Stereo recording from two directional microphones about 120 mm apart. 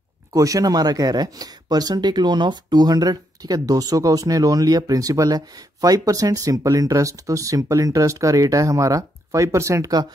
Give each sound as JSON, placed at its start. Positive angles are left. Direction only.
{"t": 0.3, "sound": "speech", "side_deg": -30}